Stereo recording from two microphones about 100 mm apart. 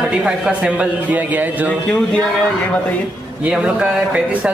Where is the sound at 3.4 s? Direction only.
10° right (ahead or behind).